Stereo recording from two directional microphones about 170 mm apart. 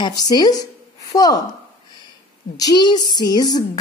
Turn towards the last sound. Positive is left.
turn(degrees=25)  # may be behind; listen again after turning